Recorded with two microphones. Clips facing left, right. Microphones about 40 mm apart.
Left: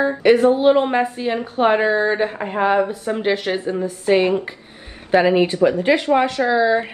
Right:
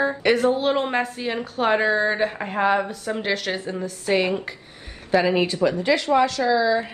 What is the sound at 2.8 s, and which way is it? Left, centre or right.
A woman's voice, left.